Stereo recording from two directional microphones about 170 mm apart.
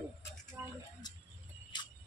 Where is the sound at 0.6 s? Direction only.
15° right (ahead or behind).